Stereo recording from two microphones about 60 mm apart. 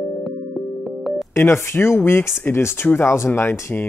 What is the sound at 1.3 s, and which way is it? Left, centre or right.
Speech, left.